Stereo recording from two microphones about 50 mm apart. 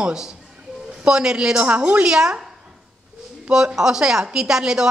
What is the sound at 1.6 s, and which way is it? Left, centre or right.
Speech, right.